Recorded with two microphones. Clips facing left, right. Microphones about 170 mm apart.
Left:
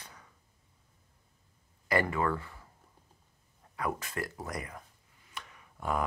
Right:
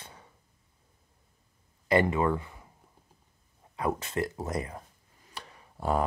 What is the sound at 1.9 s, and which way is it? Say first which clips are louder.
Speech: right 5 dB; 20° right (ahead or behind).